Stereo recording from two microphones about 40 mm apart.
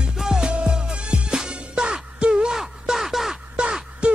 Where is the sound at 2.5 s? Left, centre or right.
Centre.